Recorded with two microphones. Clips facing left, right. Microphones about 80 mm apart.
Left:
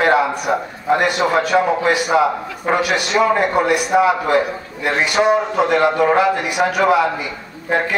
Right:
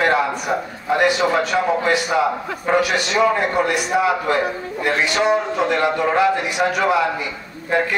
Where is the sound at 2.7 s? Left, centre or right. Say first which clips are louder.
Left 1 dB; left.